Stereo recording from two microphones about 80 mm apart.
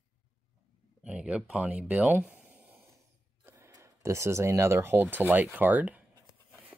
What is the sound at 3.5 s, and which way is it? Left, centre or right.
Speech, right.